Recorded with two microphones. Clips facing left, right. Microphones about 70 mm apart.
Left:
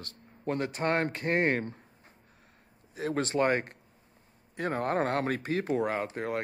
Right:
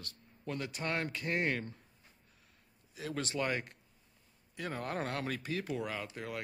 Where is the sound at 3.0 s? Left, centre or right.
Left.